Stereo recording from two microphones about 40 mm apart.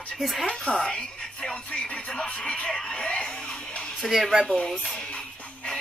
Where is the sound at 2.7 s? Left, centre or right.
Centre.